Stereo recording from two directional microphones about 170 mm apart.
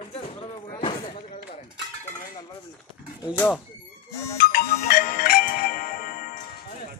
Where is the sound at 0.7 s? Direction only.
30° left (ahead or behind).